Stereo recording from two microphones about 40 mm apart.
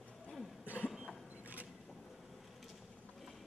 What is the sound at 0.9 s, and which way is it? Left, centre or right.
Vehicle, centre.